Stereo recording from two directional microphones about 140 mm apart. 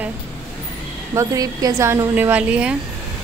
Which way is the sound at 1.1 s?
25° right (ahead or behind).